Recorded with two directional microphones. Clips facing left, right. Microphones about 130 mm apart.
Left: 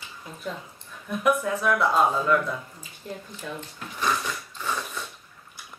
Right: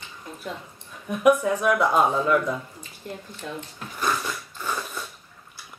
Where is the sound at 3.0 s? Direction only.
Centre (ahead or behind).